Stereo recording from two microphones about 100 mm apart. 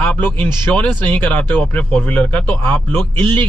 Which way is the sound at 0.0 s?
20° left (ahead or behind).